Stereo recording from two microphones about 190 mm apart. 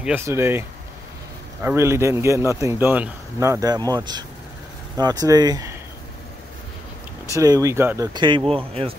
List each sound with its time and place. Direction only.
0.0 s speech: 10° right (ahead or behind)
7.3 s speech: 15° right (ahead or behind)
8.1 s speech: 25° right (ahead or behind)